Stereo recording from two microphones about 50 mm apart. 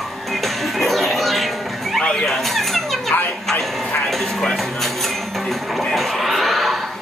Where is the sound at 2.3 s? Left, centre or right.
Centre.